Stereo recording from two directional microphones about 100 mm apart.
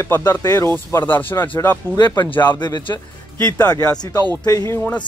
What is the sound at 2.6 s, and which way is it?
Speech, 45° left (ahead or behind).